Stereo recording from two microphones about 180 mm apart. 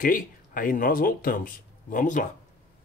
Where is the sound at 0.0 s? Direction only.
50° left (ahead or behind).